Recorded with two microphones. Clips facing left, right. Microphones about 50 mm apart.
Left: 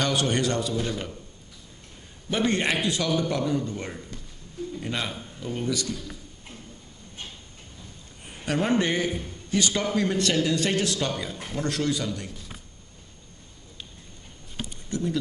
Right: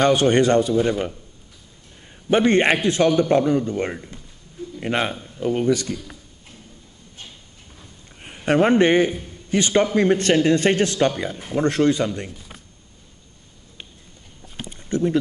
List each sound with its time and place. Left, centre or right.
0.0 s a man's voice: right
0.7 s speech: right
2.2 s a man's voice: right
8.5 s a man's voice: right
14.7 s a sound: right